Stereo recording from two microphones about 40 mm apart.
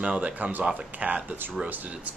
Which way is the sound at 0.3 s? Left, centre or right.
Right.